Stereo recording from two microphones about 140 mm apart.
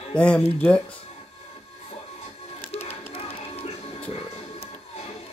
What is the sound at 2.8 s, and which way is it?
Music, 45° left (ahead or behind).